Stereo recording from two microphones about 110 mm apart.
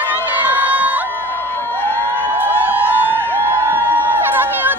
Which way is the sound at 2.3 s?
15° right (ahead or behind).